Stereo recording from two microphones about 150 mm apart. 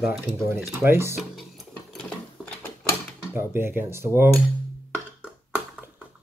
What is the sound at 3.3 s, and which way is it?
Cutlery, 15° right (ahead or behind).